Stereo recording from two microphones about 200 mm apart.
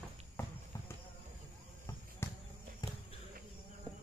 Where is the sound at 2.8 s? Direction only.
20° left (ahead or behind).